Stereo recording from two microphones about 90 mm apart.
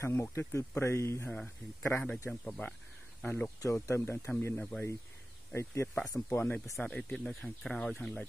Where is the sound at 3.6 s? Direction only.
35° left (ahead or behind).